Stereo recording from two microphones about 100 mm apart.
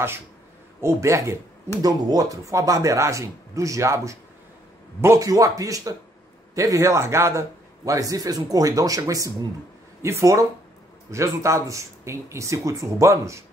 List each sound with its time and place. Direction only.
0.7 s a man's voice: 30° right (ahead or behind)
1.8 s a man's voice: 40° right (ahead or behind)